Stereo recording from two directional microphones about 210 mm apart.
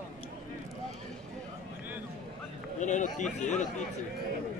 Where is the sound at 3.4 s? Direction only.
35° left (ahead or behind).